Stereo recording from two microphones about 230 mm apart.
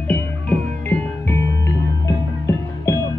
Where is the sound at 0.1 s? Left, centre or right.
Centre.